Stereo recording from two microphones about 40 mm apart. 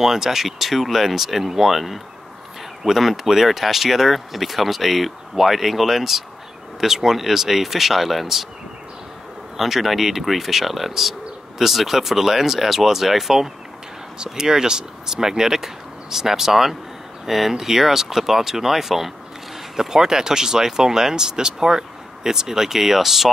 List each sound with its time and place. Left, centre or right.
0.0 s speech: centre
9.6 s speech: centre